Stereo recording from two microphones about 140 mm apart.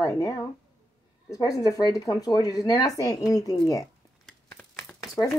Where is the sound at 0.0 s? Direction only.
25° left (ahead or behind).